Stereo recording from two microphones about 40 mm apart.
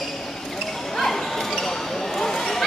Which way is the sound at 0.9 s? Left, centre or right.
Centre.